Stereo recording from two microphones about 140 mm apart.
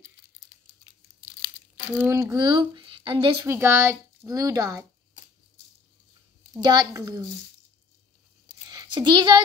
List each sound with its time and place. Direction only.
1.9 s a child's voice: 15° right (ahead or behind)
2.3 s speech: 30° right (ahead or behind)
3.4 s speech: 15° right (ahead or behind)
6.6 s speech: 30° right (ahead or behind)
8.6 s a sound: 30° right (ahead or behind)